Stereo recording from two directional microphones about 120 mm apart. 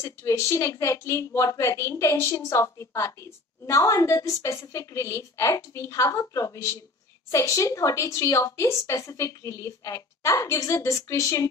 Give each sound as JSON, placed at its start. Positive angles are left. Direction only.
{"t": 0.0, "sound": "a woman's voice", "side_deg": 25}